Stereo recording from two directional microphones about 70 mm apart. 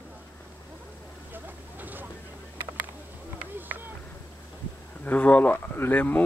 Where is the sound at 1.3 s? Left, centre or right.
Right.